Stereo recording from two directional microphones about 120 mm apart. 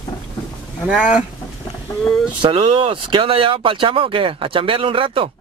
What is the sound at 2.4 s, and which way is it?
Speech, 45° right (ahead or behind).